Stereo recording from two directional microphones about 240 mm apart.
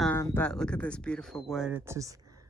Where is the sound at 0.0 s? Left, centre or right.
Centre.